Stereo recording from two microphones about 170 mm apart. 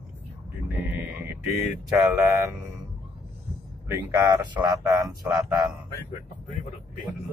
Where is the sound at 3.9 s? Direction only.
20° right (ahead or behind).